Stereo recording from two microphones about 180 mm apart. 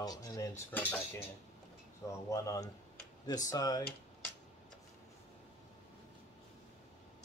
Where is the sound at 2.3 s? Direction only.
20° left (ahead or behind).